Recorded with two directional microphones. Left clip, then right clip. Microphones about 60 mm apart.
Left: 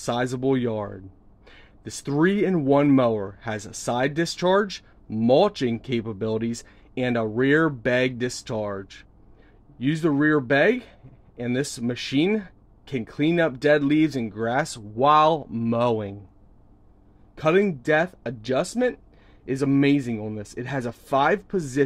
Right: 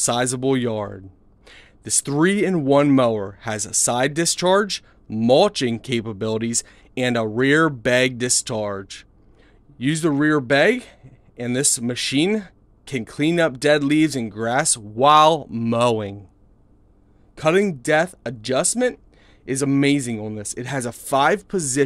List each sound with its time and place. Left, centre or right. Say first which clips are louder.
0.0 s speech: right 4 dB; right
17.4 s speech: right 2 dB; right